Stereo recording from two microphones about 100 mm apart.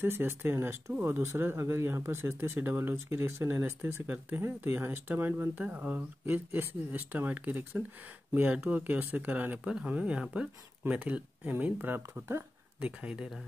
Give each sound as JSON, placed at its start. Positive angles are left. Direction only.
{"t": 0.0, "sound": "speech", "side_deg": -20}
{"t": 12.8, "sound": "speech", "side_deg": -10}